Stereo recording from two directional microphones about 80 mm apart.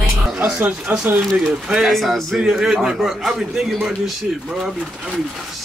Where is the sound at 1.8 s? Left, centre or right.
Centre.